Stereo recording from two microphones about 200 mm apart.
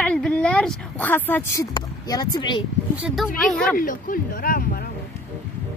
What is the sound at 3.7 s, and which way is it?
Speech, 45° left (ahead or behind).